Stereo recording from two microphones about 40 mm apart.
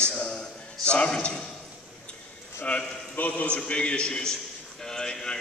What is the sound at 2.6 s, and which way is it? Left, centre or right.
A man's voice, left.